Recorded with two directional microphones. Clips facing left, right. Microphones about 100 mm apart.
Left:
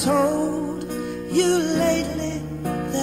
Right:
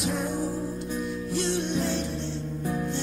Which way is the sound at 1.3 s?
60° left (ahead or behind).